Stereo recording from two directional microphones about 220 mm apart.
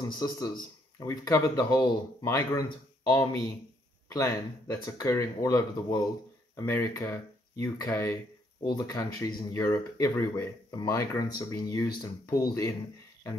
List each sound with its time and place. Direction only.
0.0 s speech: 20° left (ahead or behind)